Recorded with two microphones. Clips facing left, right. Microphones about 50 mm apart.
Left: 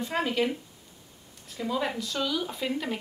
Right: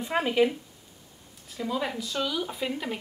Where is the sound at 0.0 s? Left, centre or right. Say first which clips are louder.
Right 3 dB; centre.